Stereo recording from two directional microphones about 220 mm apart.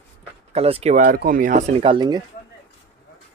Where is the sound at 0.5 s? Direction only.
30° right (ahead or behind).